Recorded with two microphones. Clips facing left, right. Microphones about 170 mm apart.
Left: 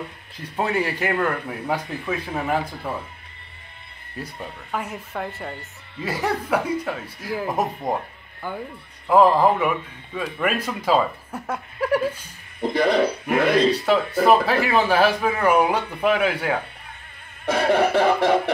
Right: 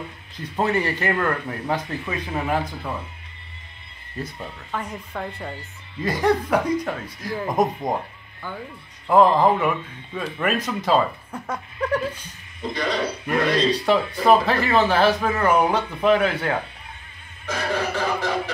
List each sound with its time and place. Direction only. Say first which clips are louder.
0.6 s speech: right 1 dB; 10° left (ahead or behind)
4.2 s speech: right 1 dB; 10° left (ahead or behind)
12.5 s music: left 6 dB; 55° left (ahead or behind)
13.9 s speech: right 1 dB; centre (ahead or behind)
17.5 s music: left 7 dB; 60° left (ahead or behind)